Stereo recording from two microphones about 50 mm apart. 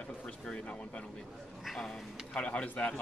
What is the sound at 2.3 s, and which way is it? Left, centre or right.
Speech, left.